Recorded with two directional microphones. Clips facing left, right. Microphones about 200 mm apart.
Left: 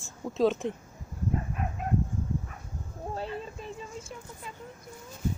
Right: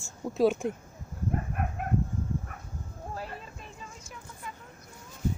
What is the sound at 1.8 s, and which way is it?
Chicken, 60° right (ahead or behind).